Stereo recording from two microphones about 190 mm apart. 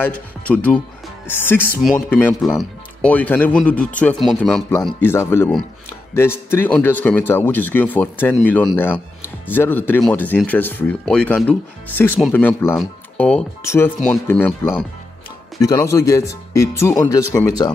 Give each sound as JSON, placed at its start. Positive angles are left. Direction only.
{"t": 0.5, "sound": "speech", "side_deg": 5}